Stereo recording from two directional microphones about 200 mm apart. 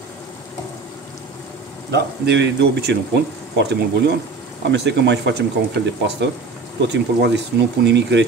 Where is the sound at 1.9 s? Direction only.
60° right (ahead or behind).